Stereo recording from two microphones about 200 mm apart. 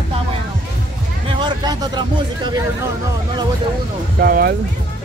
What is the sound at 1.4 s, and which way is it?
Speech, 20° right (ahead or behind).